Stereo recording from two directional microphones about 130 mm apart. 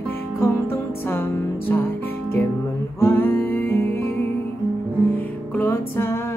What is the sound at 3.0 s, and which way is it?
Music, 15° left (ahead or behind).